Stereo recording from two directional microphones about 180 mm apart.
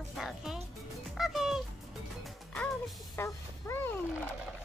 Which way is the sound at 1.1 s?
Centre (ahead or behind).